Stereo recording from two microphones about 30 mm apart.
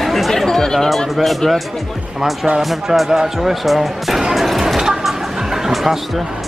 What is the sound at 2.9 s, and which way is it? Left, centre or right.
Speech, centre.